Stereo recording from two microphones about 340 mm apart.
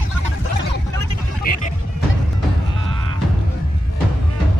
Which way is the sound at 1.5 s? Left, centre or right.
Left.